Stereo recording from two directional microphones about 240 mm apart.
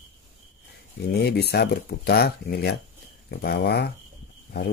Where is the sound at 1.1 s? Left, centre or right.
Left.